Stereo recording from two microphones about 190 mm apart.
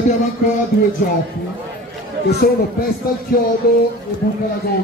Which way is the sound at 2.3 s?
55° left (ahead or behind).